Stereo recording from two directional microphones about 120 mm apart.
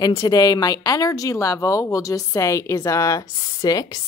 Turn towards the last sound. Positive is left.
turn(degrees=30)  # may be behind; listen again after turning